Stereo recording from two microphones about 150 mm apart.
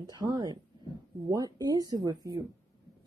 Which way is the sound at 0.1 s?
25° right (ahead or behind).